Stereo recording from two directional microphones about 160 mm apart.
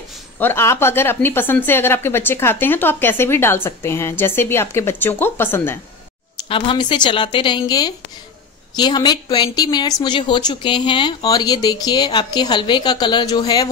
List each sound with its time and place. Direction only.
0.4 s a woman's voice: 15° left (ahead or behind)
6.5 s speech: 35° left (ahead or behind)